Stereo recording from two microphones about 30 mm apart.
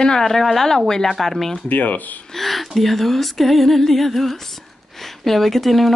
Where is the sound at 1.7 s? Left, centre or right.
Left.